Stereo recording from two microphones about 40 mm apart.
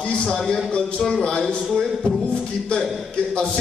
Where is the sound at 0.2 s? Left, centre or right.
Centre.